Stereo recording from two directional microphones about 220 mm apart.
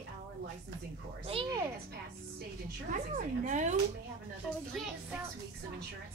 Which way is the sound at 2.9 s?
35° right (ahead or behind).